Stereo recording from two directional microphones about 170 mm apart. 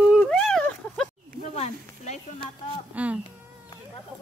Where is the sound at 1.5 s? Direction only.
40° left (ahead or behind).